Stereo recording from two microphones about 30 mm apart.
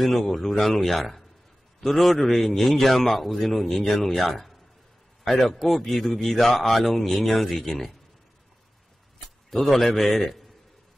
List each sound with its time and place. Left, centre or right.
0.0 s speech: centre
9.5 s speech: centre